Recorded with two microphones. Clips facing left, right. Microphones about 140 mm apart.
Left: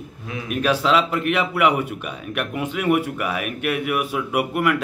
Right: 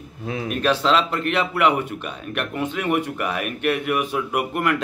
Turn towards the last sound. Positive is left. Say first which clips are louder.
# left 2 dB
turn(degrees=10)  # may be behind; listen again after turning